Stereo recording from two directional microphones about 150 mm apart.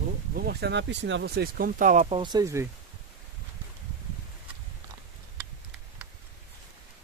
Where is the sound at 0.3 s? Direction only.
90° right.